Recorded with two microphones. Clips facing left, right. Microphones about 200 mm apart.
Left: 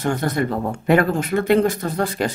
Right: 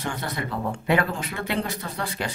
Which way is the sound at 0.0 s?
45° left (ahead or behind).